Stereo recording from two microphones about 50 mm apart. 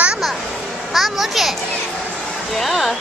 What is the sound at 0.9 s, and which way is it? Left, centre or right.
Speech, centre.